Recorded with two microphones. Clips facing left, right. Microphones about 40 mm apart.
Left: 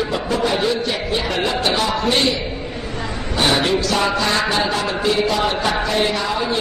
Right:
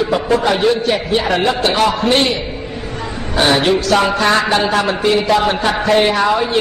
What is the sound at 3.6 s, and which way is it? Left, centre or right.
A man's voice, right.